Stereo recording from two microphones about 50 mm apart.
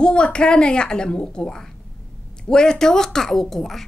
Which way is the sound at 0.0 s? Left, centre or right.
Centre.